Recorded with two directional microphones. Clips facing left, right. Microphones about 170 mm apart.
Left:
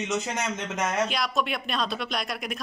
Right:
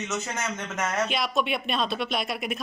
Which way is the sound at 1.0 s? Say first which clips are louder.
Right 1 dB; centre (ahead or behind).